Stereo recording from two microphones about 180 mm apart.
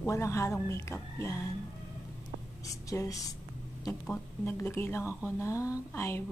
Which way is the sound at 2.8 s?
20° left (ahead or behind).